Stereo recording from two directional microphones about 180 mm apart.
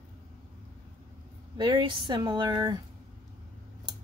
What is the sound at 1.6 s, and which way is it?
Speech, 25° right (ahead or behind).